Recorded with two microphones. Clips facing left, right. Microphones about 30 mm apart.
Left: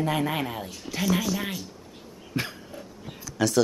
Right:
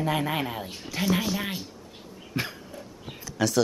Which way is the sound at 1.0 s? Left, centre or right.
Right.